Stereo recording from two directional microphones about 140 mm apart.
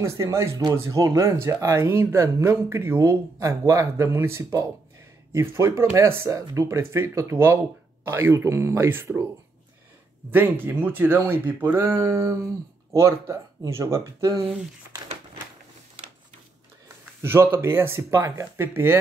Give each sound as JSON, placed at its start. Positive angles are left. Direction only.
{"t": 0.0, "sound": "speech", "side_deg": -20}
{"t": 10.3, "sound": "speech", "side_deg": -15}
{"t": 17.2, "sound": "speech", "side_deg": -15}